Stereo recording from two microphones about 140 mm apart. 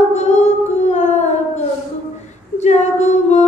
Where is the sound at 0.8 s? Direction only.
55° left (ahead or behind).